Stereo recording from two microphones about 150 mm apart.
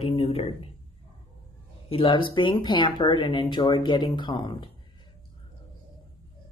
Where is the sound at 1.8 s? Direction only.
35° left (ahead or behind).